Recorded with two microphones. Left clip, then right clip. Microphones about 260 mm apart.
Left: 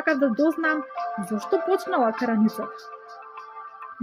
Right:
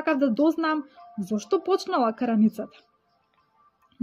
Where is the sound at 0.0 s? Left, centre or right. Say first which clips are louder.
Left 1 dB; centre.